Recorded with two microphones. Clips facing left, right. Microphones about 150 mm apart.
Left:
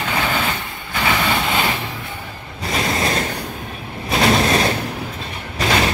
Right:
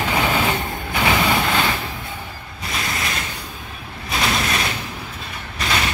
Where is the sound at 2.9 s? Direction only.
35° left (ahead or behind).